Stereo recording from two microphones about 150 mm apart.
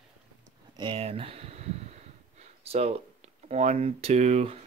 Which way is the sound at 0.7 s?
30° right (ahead or behind).